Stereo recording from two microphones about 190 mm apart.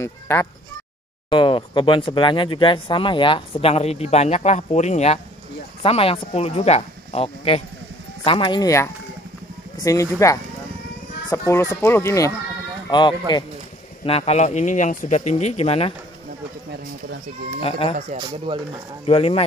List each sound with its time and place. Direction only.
0.0 s honk: 10° left (ahead or behind)
1.3 s speech: 25° left (ahead or behind)
13.3 s speech: 25° left (ahead or behind)
17.6 s speech: 30° left (ahead or behind)
18.5 s speech: 25° right (ahead or behind)
19.0 s speech: 30° left (ahead or behind)